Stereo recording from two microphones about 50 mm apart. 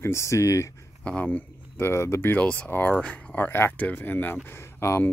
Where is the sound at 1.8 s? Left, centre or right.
Left.